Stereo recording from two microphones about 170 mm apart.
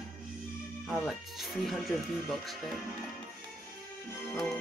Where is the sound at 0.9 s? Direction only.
Centre (ahead or behind).